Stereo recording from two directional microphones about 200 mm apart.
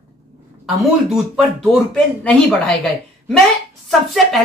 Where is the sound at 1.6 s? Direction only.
5° left (ahead or behind).